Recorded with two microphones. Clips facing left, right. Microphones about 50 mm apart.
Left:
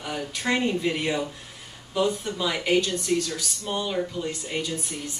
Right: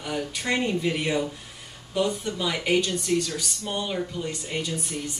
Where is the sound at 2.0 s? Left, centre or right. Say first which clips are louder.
Left 1 dB; centre.